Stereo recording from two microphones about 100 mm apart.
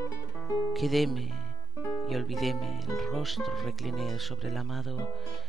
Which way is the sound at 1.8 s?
30° left (ahead or behind).